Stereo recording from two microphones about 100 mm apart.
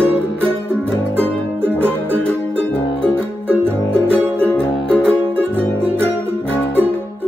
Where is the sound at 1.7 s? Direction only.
20° right (ahead or behind).